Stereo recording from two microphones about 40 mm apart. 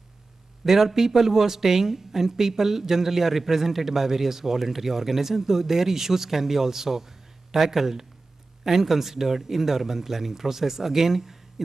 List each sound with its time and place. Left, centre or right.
0.7 s a woman's voice: centre